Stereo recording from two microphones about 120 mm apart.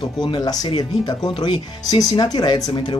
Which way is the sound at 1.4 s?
35° left (ahead or behind).